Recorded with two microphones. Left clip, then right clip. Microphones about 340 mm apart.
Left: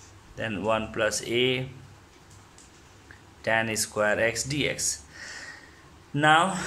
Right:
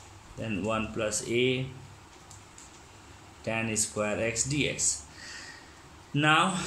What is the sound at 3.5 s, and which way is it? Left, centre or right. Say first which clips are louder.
Speech: left 6 dB; left.